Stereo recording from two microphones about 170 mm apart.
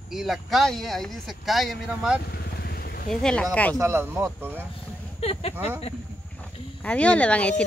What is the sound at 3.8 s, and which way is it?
Speech, 15° right (ahead or behind).